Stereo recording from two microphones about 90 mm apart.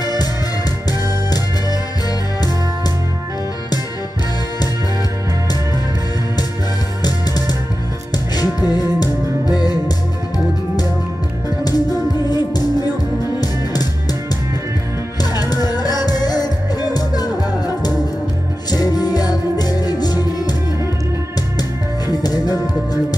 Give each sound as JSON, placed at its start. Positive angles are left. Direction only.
{"t": 0.0, "sound": "music", "side_deg": 50}
{"t": 7.0, "sound": "music", "side_deg": 50}
{"t": 15.3, "sound": "music", "side_deg": 45}
{"t": 21.5, "sound": "music", "side_deg": 50}